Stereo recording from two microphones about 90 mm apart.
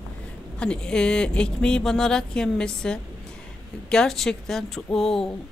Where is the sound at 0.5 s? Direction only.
10° left (ahead or behind).